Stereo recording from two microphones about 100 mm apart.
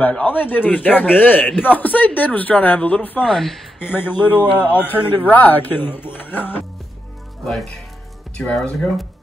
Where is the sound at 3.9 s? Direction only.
20° left (ahead or behind).